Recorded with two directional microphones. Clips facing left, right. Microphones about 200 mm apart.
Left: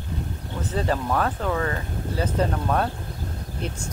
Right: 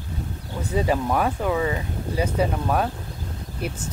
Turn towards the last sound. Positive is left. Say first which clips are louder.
# right 1 dB
turn(degrees=-5)  # may be behind; listen again after turning